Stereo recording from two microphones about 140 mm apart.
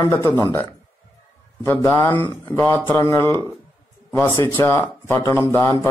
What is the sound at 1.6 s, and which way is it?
A man's voice, 15° left (ahead or behind).